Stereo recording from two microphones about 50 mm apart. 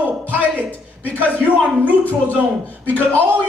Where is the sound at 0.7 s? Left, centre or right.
Left.